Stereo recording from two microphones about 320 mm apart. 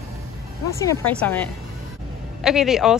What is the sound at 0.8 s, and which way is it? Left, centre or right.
Speech, centre.